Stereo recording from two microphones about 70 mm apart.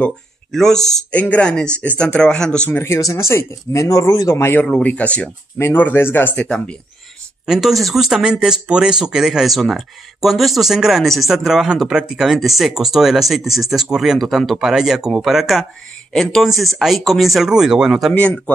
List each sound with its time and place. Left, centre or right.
0.5 s speech: centre
1.1 s speech: left
2.7 s speech: left
4.8 s speech: centre
5.6 s speech: left
7.4 s speech: centre
16.1 s speech: centre